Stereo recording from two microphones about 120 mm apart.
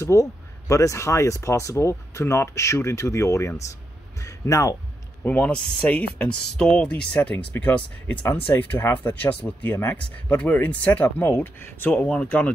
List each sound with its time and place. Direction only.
0.0 s speech: 25° left (ahead or behind)
5.2 s speech: 10° left (ahead or behind)